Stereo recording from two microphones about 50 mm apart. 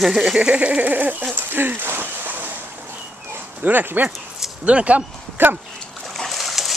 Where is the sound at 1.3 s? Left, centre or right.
Right.